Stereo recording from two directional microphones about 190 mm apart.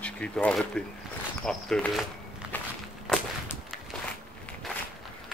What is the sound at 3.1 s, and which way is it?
Walk, 5° left (ahead or behind).